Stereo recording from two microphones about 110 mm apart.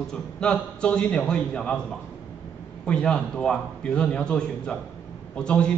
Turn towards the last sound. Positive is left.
turn(degrees=10)  # may be behind; listen again after turning